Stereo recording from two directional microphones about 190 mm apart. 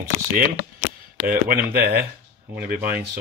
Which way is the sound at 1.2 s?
50° right (ahead or behind).